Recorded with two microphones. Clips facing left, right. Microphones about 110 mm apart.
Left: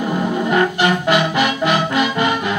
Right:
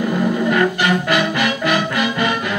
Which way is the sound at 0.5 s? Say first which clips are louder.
Left 3 dB; 25° left (ahead or behind).